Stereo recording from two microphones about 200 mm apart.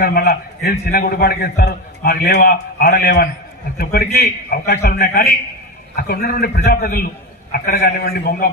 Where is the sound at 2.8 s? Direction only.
50° left (ahead or behind).